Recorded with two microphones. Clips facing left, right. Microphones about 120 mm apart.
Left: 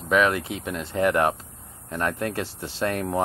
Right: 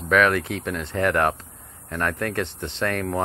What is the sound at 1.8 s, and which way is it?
Speech, 30° left (ahead or behind).